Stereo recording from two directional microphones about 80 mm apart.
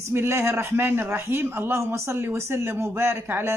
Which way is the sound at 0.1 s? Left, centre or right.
Right.